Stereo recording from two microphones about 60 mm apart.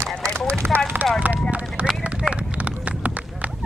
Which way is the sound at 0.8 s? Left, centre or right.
Right.